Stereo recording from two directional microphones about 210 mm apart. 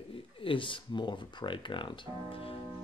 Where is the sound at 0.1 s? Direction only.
25° left (ahead or behind).